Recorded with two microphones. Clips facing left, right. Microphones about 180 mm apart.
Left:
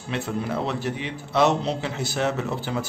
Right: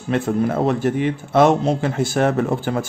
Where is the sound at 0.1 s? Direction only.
50° right (ahead or behind).